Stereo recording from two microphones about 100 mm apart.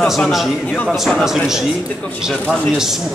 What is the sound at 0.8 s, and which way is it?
Speech, centre (ahead or behind).